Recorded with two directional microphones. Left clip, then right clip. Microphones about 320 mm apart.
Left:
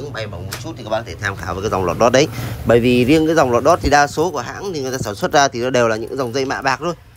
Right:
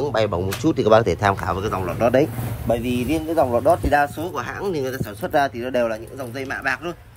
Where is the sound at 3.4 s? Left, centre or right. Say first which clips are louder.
Left 4 dB; right.